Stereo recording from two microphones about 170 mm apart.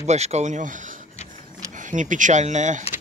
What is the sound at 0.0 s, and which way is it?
Speech, 40° right (ahead or behind).